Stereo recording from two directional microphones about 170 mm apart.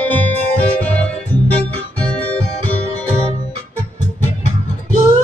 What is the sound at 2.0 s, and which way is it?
Guitar, 10° left (ahead or behind).